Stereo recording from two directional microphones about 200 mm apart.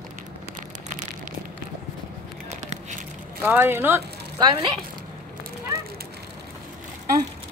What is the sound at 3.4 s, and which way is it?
Speech, 10° right (ahead or behind).